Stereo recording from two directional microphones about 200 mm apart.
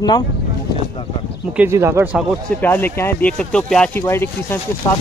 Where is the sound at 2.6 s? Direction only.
10° left (ahead or behind).